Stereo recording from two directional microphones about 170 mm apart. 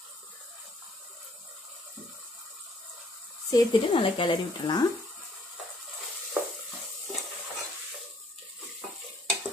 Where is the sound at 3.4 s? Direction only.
25° left (ahead or behind).